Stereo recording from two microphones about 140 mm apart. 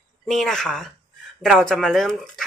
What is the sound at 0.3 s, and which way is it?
Speech, 5° left (ahead or behind).